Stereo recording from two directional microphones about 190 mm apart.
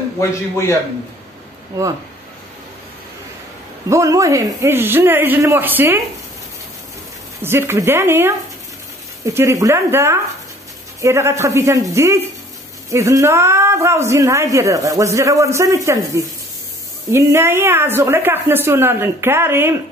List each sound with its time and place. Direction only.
0.2 s a man's voice: 15° left (ahead or behind)
3.9 s a woman's voice: 15° right (ahead or behind)
7.4 s a woman's voice: 15° right (ahead or behind)